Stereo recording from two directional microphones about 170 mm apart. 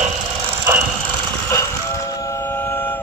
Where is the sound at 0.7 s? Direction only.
15° right (ahead or behind).